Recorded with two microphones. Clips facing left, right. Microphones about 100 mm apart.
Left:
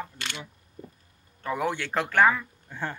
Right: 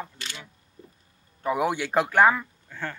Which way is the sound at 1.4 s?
15° right (ahead or behind).